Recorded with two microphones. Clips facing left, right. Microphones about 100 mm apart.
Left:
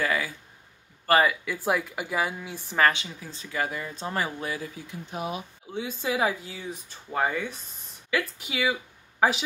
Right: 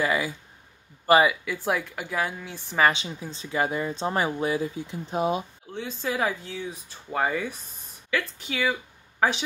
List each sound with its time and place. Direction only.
0.0 s speech: 20° right (ahead or behind)
1.3 s speech: centre (ahead or behind)
2.9 s speech: 25° right (ahead or behind)
5.7 s speech: 10° left (ahead or behind)
8.1 s speech: 10° left (ahead or behind)